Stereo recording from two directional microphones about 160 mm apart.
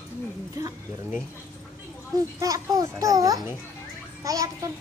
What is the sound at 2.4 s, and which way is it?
A child's voice, 20° right (ahead or behind).